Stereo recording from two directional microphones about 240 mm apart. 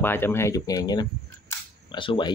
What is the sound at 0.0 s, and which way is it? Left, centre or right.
Speech, centre.